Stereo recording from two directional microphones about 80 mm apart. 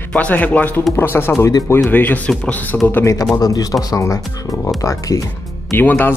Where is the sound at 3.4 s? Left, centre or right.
Left.